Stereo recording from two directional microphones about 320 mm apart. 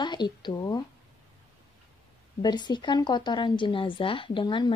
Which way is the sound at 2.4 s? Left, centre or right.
Centre.